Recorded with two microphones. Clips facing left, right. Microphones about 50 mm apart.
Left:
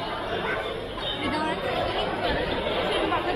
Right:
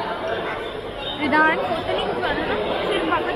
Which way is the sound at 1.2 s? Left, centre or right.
Right.